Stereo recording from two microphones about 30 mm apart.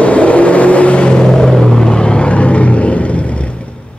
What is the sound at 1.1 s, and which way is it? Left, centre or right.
Vehicle, left.